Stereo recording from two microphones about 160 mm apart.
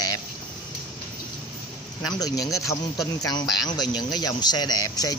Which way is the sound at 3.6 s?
25° left (ahead or behind).